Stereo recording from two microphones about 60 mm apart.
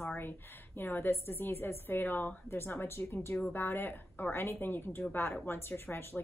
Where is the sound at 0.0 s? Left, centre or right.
Left.